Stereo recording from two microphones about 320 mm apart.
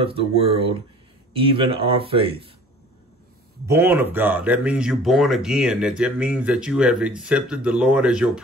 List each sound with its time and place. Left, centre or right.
0.0 s speech: centre
3.6 s speech: centre